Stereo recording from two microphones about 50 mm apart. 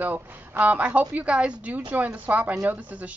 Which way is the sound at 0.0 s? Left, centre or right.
Right.